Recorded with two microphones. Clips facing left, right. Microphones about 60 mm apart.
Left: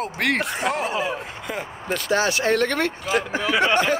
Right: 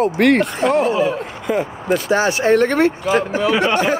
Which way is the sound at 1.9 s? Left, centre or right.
Right.